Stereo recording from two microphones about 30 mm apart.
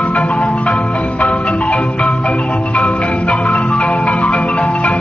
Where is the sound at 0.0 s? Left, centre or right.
Left.